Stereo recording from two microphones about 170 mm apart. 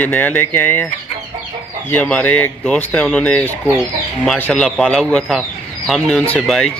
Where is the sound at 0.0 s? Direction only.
10° left (ahead or behind).